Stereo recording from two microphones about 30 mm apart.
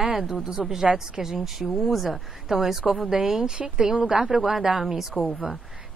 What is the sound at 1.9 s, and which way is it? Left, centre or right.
Speech, centre.